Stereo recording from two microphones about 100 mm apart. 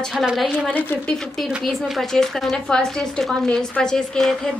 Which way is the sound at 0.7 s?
15° left (ahead or behind).